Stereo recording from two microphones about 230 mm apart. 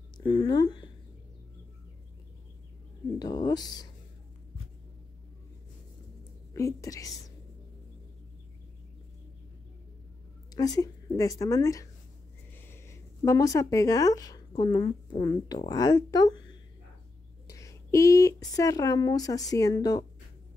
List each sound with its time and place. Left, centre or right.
0.2 s speech: centre
3.2 s speech: centre
6.5 s speech: centre
10.5 s speech: centre
17.5 s a sound: centre
18.5 s speech: centre